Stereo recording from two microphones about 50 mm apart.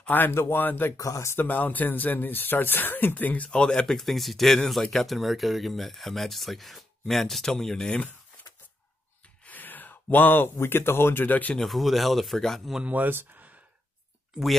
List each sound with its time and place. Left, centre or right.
0.1 s speech: left
0.9 s speech: left
1.3 s speech: left
3.4 s speech: centre
3.8 s speech: centre
9.5 s speech: left
11.6 s speech: centre
12.8 s speech: right